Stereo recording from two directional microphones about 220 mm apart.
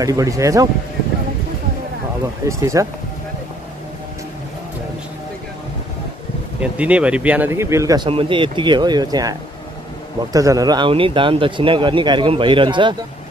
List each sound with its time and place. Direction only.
0.0 s speech: 15° right (ahead or behind)
2.4 s speech: 15° right (ahead or behind)
6.6 s speech: 5° right (ahead or behind); by 12.9 s 20° right (ahead or behind)